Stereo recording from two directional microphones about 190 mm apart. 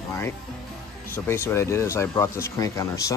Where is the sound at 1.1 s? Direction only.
15° left (ahead or behind).